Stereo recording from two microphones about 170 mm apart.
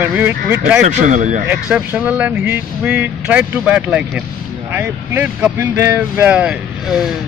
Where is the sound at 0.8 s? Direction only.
45° right (ahead or behind).